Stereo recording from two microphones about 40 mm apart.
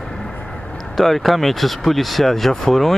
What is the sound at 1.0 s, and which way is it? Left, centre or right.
Speech, centre.